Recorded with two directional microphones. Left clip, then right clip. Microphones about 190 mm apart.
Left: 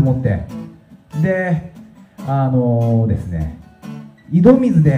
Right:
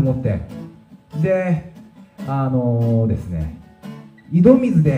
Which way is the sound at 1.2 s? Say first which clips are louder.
Even; 20° left (ahead or behind).